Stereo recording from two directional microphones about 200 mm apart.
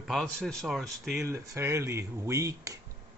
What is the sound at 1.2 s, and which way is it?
Speech, 15° right (ahead or behind).